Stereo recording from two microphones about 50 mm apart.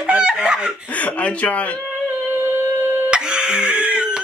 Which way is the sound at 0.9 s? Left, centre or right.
Left.